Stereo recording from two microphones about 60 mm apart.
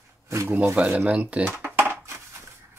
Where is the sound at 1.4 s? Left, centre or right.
Right.